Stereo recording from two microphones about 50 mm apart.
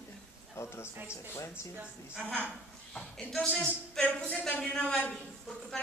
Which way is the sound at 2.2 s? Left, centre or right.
Left.